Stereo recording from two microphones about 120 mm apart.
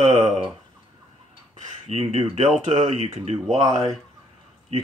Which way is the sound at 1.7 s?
65° right (ahead or behind).